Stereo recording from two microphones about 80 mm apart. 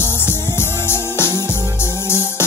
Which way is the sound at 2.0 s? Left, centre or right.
Left.